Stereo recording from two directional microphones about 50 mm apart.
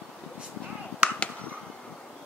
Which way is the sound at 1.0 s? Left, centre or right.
Right.